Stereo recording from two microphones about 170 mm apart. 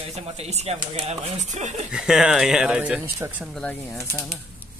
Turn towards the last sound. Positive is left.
turn(degrees=5)  # may be behind; listen again after turning